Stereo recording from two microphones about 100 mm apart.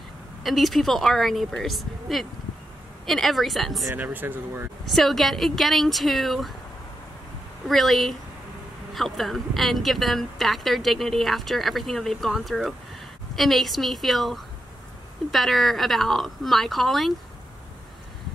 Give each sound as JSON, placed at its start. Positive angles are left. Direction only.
{"t": 0.4, "sound": "speech", "side_deg": 0}
{"t": 3.9, "sound": "speech", "side_deg": -20}
{"t": 4.9, "sound": "speech", "side_deg": 0}
{"t": 7.6, "sound": "speech", "side_deg": 0}